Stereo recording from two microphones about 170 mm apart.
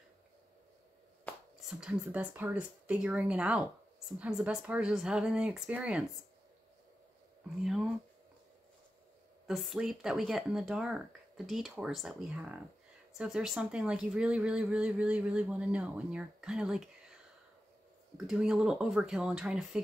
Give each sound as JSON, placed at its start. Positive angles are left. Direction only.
{"t": 1.7, "sound": "speech", "side_deg": -5}
{"t": 7.6, "sound": "speech", "side_deg": -5}
{"t": 9.5, "sound": "speech", "side_deg": 0}
{"t": 18.1, "sound": "speech", "side_deg": -5}